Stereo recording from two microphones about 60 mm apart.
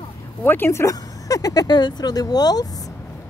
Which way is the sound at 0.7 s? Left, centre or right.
Left.